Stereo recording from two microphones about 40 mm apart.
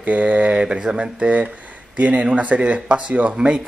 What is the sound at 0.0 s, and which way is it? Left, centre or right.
Speech, right.